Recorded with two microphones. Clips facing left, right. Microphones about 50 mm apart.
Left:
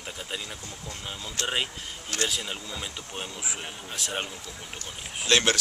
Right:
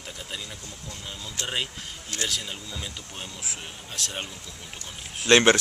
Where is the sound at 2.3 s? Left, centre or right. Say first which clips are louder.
Left 1 dB; centre.